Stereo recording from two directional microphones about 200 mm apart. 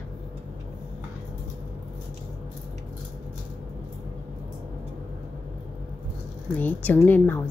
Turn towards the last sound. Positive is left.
turn(degrees=10)  # may be behind; listen again after turning